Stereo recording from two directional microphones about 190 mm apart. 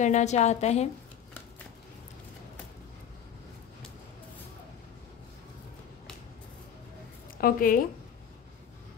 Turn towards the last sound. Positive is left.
turn(degrees=45)  # may be behind; listen again after turning